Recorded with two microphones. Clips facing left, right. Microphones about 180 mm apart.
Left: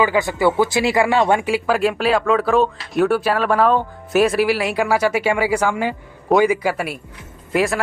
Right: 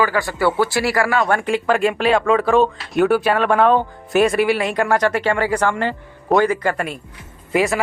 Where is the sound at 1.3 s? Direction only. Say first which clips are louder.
Even; 5° left (ahead or behind).